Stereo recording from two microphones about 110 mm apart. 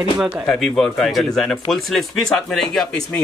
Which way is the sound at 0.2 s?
Centre (ahead or behind).